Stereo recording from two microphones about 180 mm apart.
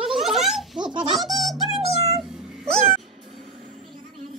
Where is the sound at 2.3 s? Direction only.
Centre (ahead or behind).